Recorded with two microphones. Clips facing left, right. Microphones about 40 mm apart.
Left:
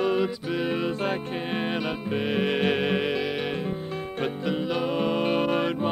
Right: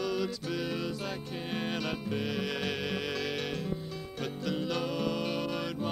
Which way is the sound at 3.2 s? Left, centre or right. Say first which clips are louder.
Left 6 dB; left.